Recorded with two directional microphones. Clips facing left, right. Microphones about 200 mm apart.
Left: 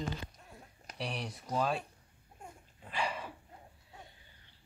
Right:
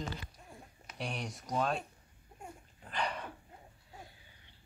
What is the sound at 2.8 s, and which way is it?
Dog, 5° left (ahead or behind).